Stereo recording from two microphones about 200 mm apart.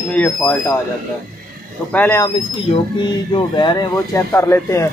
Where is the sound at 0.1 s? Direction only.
5° left (ahead or behind).